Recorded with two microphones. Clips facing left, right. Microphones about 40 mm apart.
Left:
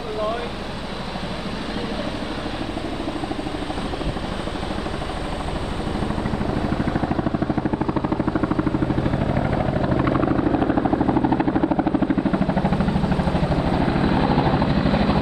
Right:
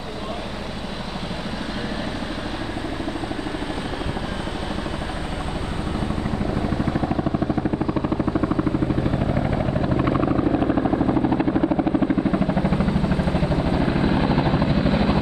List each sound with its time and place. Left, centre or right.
7.3 s vehicle: centre
13.1 s vehicle: left
13.7 s helicopter: centre